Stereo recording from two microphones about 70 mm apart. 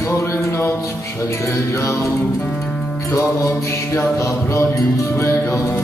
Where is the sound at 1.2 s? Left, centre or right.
Left.